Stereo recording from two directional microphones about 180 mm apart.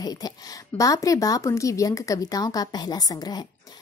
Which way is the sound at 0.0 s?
20° left (ahead or behind).